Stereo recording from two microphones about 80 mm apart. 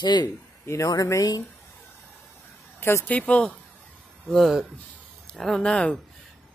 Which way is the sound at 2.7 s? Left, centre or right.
Left.